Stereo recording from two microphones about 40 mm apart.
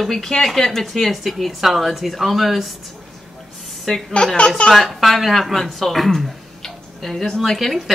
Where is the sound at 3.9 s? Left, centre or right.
Centre.